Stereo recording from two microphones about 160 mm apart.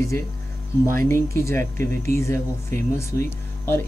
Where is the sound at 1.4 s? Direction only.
15° left (ahead or behind).